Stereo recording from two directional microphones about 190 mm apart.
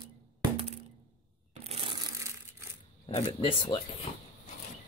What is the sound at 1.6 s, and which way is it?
Crushing, 30° right (ahead or behind).